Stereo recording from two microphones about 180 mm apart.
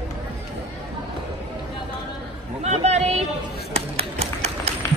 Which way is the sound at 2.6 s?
35° right (ahead or behind).